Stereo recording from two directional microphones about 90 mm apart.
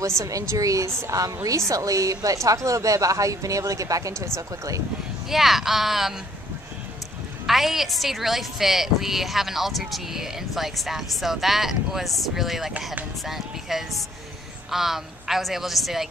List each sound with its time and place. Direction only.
0.2 s a woman's voice: 40° right (ahead or behind)
5.3 s a woman's voice: 5° right (ahead or behind)
7.4 s a woman's voice: 5° right (ahead or behind)